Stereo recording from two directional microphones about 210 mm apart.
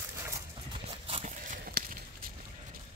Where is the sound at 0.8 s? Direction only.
30° right (ahead or behind).